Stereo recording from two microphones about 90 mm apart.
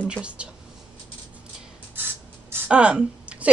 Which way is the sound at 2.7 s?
10° right (ahead or behind).